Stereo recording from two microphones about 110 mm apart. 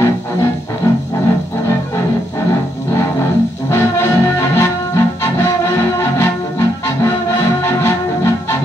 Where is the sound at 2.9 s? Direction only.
25° left (ahead or behind).